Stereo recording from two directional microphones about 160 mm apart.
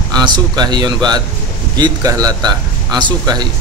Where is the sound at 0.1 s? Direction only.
25° right (ahead or behind).